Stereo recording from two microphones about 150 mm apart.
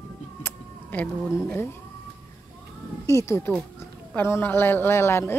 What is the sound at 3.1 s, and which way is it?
Speech, 20° left (ahead or behind).